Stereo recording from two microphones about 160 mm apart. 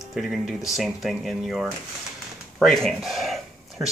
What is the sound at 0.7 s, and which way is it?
Speech, centre (ahead or behind).